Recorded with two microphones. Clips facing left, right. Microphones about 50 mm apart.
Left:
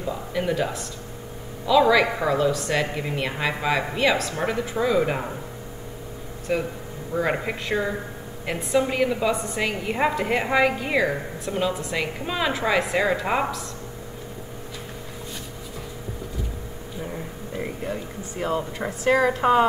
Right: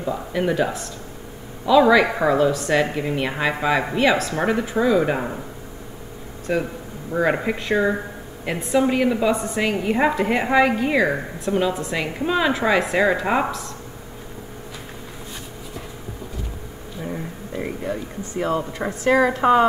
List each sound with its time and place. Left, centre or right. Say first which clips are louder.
0.0 s a woman's voice: right 3 dB; centre
2.3 s a woman's voice: right 4 dB; centre
4.5 s speech: right 5 dB; centre
4.8 s a woman's voice: right 3 dB; centre
6.5 s a woman's voice: right 2 dB; centre
17.0 s a woman's voice: right 4 dB; centre